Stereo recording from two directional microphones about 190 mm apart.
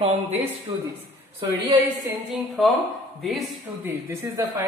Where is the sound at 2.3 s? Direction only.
Centre (ahead or behind).